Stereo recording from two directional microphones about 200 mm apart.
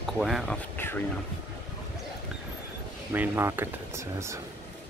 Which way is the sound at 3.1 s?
10° right (ahead or behind).